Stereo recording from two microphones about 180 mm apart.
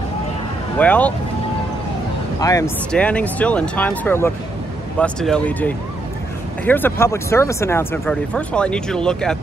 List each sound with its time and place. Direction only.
0.7 s speech: 10° left (ahead or behind)
2.4 s speech: 20° left (ahead or behind)
2.9 s speech: 5° left (ahead or behind)